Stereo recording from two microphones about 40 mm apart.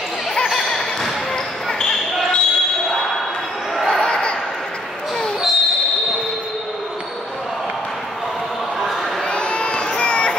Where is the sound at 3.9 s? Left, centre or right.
Left.